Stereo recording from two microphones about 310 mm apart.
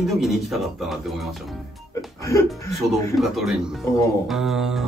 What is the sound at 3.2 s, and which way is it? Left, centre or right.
A man's voice, centre.